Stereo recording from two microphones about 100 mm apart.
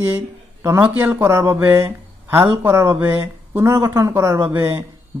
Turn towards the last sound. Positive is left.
turn(degrees=-30)  # may be behind; listen again after turning